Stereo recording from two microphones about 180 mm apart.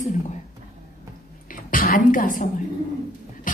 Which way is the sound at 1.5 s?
50° left (ahead or behind).